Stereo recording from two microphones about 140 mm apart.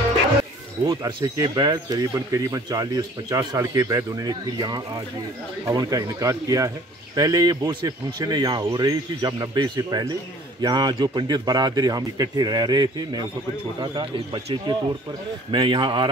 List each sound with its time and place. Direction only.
0.8 s speech: 30° right (ahead or behind)